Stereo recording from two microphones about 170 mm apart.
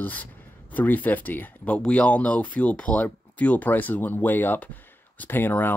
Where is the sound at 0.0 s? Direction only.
10° left (ahead or behind).